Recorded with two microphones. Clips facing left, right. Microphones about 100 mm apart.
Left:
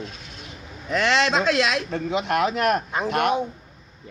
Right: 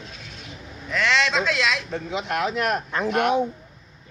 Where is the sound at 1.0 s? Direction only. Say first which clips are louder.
Left 1 dB; 55° left (ahead or behind).